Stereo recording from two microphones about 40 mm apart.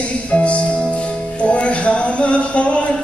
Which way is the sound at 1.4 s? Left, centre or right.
Left.